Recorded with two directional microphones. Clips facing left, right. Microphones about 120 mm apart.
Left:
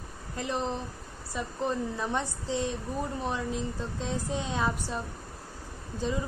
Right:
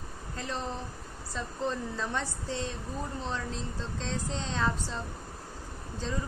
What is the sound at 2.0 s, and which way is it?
Speech, 15° left (ahead or behind).